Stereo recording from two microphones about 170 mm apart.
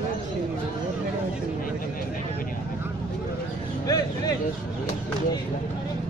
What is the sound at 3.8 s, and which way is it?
Vehicle, 20° left (ahead or behind).